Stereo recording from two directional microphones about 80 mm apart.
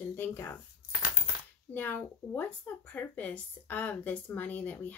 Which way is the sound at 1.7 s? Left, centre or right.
Left.